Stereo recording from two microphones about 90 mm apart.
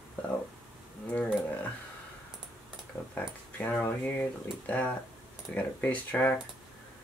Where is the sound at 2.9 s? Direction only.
40° left (ahead or behind).